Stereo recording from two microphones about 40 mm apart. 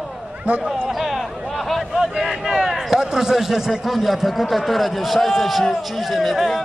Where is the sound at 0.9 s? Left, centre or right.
Centre.